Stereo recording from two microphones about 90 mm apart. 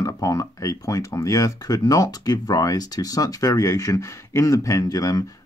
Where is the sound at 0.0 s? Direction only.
40° left (ahead or behind).